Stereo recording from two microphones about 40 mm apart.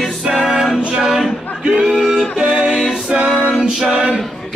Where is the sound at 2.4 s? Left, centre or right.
Right.